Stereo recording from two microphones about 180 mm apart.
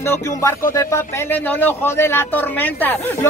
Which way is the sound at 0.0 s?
15° left (ahead or behind).